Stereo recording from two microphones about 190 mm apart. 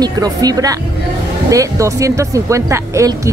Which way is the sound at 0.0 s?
20° right (ahead or behind).